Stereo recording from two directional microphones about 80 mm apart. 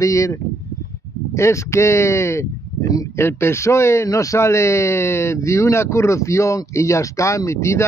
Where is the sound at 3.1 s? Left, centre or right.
Left.